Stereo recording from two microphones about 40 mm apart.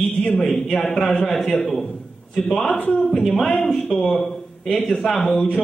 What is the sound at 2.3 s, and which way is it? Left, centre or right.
A woman's voice, centre.